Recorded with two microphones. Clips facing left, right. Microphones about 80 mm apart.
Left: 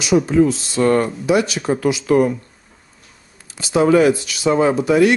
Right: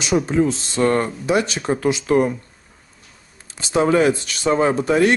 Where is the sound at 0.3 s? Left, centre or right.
Right.